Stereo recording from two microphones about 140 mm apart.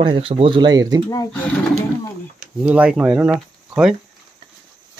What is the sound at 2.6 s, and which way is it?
Speech, 10° right (ahead or behind).